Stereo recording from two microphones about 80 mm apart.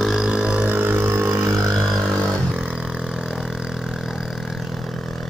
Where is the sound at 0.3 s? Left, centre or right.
Centre; by 1.4 s right.